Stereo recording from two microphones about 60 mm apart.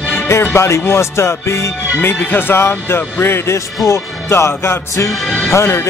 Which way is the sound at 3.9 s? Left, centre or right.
Left.